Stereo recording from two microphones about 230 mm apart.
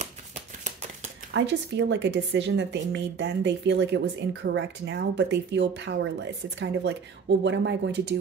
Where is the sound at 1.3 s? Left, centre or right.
Right.